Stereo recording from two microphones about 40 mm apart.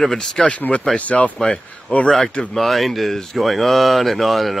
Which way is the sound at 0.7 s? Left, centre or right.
Left.